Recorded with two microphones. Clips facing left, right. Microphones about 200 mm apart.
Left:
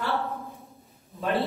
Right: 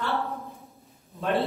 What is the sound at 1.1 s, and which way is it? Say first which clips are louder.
Speech: right 1 dB; centre (ahead or behind).